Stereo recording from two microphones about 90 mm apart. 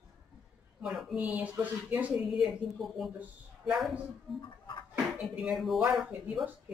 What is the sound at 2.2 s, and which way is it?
Speech, centre (ahead or behind).